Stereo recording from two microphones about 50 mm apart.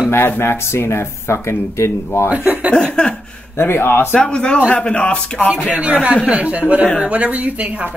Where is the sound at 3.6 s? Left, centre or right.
Left.